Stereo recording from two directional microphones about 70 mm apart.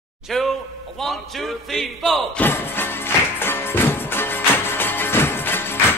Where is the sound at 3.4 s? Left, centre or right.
Left.